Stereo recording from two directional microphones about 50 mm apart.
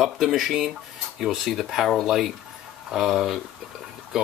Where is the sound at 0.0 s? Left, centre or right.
Centre.